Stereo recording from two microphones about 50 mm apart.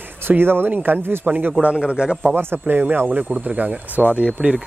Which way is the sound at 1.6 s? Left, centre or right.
Centre.